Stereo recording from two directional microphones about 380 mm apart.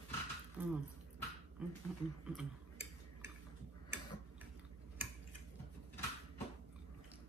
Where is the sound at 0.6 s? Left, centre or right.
Centre.